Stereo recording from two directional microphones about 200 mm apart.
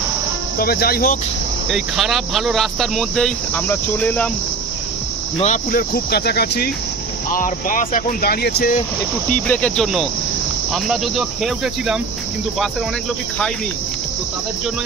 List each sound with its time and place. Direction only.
0.6 s speech: 50° left (ahead or behind)
1.7 s speech: centre (ahead or behind)
5.4 s speech: 40° left (ahead or behind)
7.3 s speech: 40° left (ahead or behind)
9.3 s speech: 5° left (ahead or behind)